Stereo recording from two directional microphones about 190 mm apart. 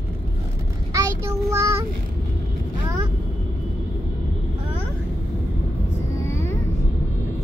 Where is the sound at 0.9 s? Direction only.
15° right (ahead or behind).